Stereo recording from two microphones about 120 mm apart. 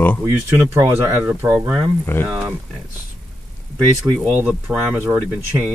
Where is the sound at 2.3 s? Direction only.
10° right (ahead or behind).